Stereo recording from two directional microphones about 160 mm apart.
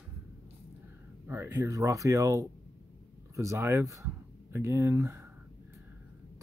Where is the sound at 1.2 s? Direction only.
15° right (ahead or behind).